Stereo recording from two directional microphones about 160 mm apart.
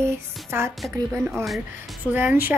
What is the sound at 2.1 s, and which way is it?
Music, 10° right (ahead or behind).